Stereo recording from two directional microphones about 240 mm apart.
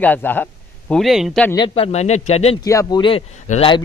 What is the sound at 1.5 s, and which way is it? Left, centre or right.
A man's voice, left.